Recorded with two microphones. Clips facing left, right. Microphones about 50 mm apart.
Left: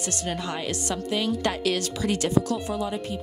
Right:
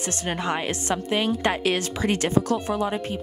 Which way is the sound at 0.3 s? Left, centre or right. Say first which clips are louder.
Right 5 dB; right.